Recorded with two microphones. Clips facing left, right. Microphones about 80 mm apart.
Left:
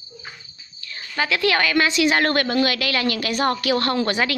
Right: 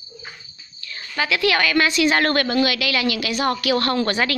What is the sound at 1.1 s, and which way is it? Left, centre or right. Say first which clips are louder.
A woman's voice: even; left.